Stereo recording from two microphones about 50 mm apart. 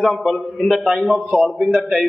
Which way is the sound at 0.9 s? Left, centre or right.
Centre.